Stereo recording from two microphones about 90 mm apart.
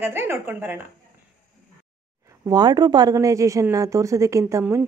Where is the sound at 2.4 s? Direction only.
50° right (ahead or behind).